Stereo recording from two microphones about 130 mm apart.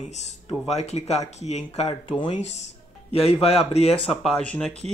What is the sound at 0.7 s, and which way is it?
Speech, 55° left (ahead or behind).